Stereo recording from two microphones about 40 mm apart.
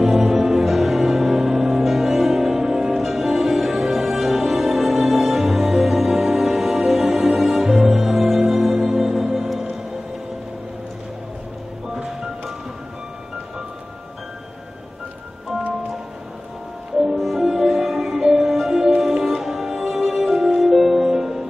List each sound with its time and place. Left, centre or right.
0.0 s music: centre
11.9 s music: centre
17.1 s music: centre